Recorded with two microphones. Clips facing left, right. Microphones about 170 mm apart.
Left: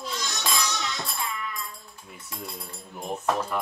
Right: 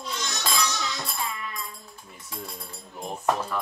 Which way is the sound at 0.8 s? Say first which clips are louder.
Even; centre (ahead or behind).